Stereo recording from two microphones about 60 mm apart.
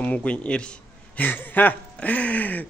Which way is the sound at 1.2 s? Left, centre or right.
Left.